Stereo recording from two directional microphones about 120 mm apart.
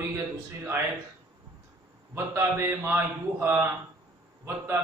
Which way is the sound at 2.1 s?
20° right (ahead or behind).